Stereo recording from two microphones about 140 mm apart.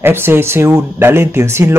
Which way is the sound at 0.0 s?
15° right (ahead or behind).